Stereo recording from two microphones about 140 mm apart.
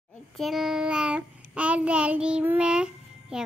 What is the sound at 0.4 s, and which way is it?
Child singing, centre (ahead or behind).